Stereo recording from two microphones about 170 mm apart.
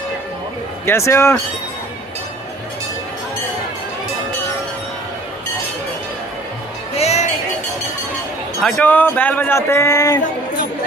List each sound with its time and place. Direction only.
0.8 s speech: 15° left (ahead or behind)
7.0 s music: 40° left (ahead or behind)
8.6 s speech: 10° left (ahead or behind)